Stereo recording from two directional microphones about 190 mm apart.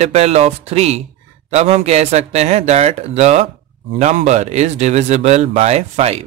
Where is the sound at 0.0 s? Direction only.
35° right (ahead or behind).